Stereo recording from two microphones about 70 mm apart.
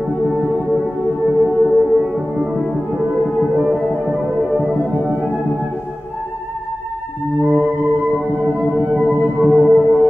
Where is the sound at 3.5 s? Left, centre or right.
Centre.